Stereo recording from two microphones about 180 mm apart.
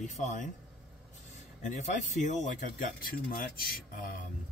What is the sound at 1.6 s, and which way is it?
Speech, 45° left (ahead or behind).